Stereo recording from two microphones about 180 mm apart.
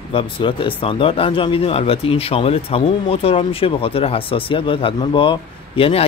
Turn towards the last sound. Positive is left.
turn(degrees=35)  # may be behind; listen again after turning